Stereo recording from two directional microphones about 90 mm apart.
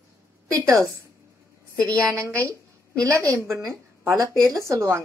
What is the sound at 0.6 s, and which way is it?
Speech, 40° right (ahead or behind).